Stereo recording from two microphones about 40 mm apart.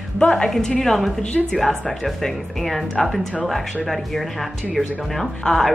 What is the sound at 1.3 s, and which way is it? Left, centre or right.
Speech, centre.